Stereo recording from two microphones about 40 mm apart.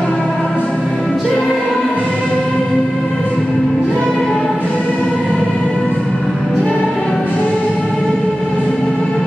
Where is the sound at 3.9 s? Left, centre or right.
Centre.